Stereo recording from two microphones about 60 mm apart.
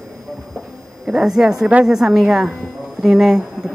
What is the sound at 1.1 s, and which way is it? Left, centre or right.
Speech, centre.